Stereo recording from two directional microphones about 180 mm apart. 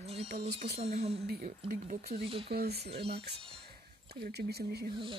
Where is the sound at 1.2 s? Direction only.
50° right (ahead or behind).